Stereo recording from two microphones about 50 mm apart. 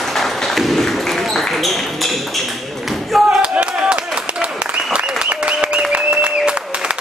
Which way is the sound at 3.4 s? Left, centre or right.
Right.